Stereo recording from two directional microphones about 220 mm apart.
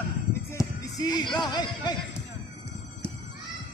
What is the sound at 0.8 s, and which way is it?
Music, 15° left (ahead or behind).